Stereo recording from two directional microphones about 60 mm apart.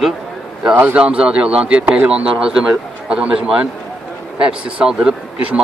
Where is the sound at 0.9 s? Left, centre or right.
Centre.